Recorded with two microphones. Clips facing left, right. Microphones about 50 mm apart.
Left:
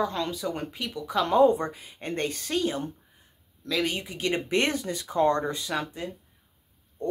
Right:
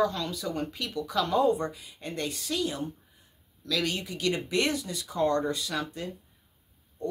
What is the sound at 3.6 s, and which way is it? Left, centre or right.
Speech, left.